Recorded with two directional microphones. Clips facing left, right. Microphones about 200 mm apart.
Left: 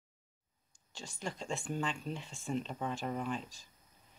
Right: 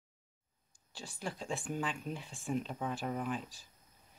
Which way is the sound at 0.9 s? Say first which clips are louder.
Even; 5° right (ahead or behind).